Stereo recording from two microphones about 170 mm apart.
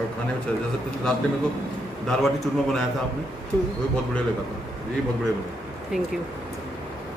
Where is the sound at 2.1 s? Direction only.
Centre (ahead or behind).